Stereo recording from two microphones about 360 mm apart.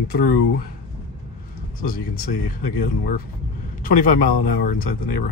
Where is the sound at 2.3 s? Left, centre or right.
Left.